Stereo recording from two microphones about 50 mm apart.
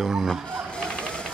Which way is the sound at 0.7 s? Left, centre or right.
Centre.